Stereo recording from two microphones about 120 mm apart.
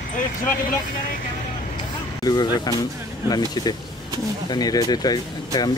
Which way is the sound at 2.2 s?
35° left (ahead or behind).